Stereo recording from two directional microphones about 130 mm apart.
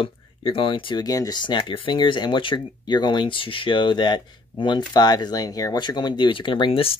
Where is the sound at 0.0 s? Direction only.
40° left (ahead or behind).